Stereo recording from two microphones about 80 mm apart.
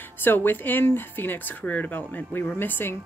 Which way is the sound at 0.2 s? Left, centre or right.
Left.